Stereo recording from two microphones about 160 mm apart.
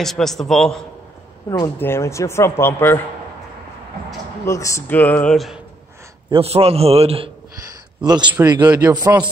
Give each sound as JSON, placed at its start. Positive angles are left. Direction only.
{"t": 0.0, "sound": "a man's voice", "side_deg": 0}
{"t": 1.5, "sound": "speech", "side_deg": 15}
{"t": 4.5, "sound": "speech", "side_deg": 20}
{"t": 6.3, "sound": "a man's voice", "side_deg": -40}
{"t": 8.0, "sound": "a man's voice", "side_deg": -25}
{"t": 8.6, "sound": "a man's voice", "side_deg": -10}
{"t": 8.9, "sound": "a man's voice", "side_deg": -25}